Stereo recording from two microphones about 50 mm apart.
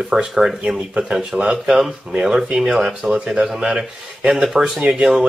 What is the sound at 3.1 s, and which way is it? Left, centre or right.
Speech, right.